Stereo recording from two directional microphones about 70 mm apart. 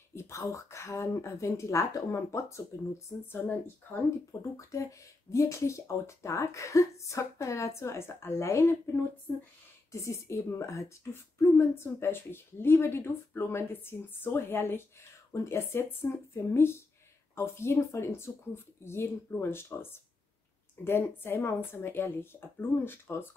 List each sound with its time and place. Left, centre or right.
0.1 s speech: left
4.3 s speech: left
9.9 s speech: left